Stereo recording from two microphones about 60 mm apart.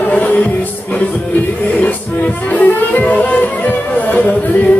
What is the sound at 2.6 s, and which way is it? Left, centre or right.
Music, left.